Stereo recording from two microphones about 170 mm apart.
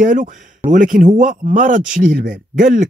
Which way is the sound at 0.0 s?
50° right (ahead or behind).